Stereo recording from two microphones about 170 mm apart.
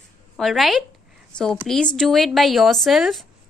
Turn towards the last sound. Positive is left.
turn(degrees=0)  # may be behind; listen again after turning